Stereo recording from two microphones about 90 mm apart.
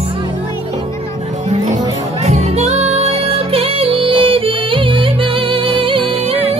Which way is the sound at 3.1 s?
90° right.